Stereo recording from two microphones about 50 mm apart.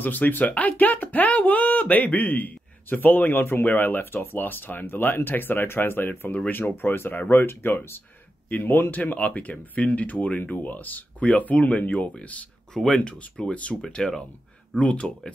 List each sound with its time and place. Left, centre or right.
0.0 s speech: left
3.6 s speech: left
8.5 s speech: left
12.7 s speech: centre
13.2 s speech: left
13.7 s speech: centre
14.8 s speech: left